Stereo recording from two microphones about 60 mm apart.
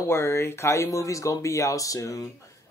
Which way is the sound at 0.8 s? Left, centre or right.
Left.